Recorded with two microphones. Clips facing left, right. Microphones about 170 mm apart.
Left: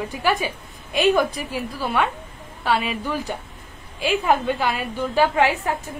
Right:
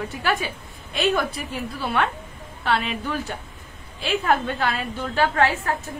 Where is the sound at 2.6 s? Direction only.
10° left (ahead or behind).